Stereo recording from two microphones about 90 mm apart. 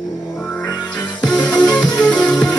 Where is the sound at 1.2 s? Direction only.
10° left (ahead or behind).